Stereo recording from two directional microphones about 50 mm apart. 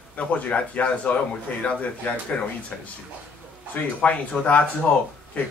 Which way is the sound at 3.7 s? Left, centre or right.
Left.